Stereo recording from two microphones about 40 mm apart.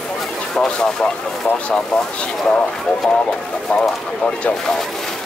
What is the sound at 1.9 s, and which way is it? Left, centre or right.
Speech, centre.